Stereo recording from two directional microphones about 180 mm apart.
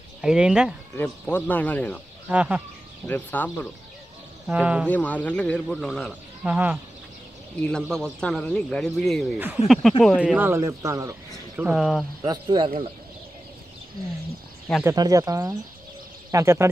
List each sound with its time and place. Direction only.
0.2 s a man's voice: 5° right (ahead or behind)
0.9 s speech: 10° left (ahead or behind)
2.2 s speech: 5° right (ahead or behind)
3.1 s speech: 10° left (ahead or behind)
4.5 s speech: 5° right (ahead or behind)
4.8 s speech: 10° left (ahead or behind)
6.4 s speech: 10° right (ahead or behind)
7.6 s a man's voice: 5° left (ahead or behind)
12.3 s speech: 25° right (ahead or behind)
14.8 s speech: 15° right (ahead or behind)